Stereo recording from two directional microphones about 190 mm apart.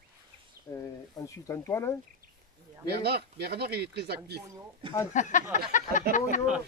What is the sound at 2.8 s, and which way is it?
Speech, 55° right (ahead or behind).